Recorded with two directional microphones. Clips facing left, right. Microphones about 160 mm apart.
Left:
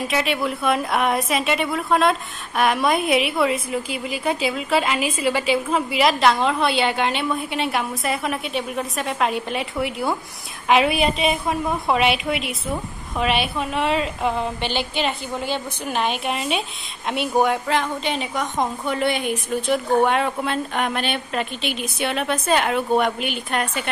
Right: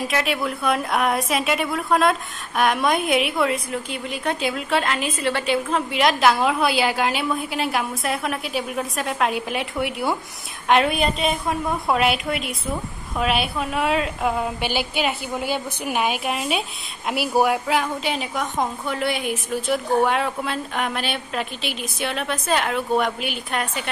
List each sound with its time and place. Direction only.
0.0 s a woman's voice: centre (ahead or behind)